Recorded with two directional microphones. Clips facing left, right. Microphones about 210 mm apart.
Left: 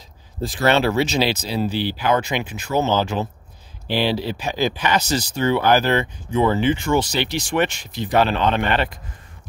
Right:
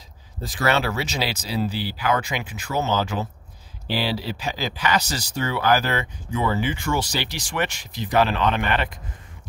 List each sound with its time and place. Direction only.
0.4 s speech: 30° left (ahead or behind)